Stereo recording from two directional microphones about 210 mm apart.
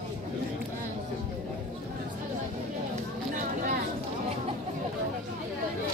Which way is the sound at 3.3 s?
40° right (ahead or behind).